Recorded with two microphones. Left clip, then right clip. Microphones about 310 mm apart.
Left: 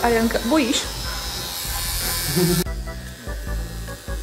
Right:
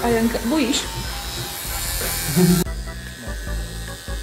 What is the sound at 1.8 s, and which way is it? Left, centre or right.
Electric shaver, left.